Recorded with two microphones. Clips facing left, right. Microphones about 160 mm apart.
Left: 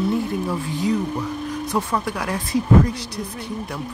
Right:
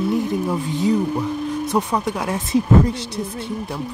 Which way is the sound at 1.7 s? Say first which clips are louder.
Right 1 dB; 25° right (ahead or behind).